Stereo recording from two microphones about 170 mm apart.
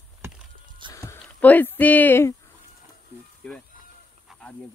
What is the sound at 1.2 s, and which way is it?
Speech, 10° left (ahead or behind).